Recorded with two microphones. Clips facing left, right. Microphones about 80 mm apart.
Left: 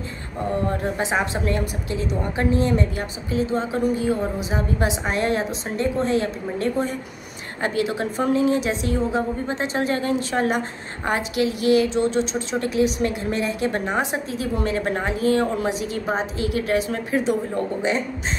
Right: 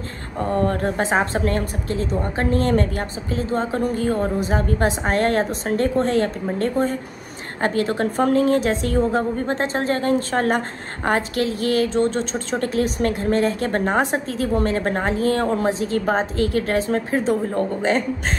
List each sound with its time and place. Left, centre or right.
0.4 s a woman's voice: right